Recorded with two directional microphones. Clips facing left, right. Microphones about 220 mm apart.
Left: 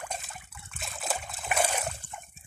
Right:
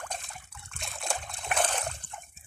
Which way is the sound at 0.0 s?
5° left (ahead or behind).